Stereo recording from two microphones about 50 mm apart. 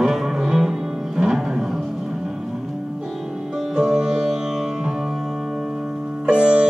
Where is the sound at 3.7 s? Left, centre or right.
Centre.